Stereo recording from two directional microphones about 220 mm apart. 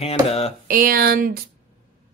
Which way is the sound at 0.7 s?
40° right (ahead or behind).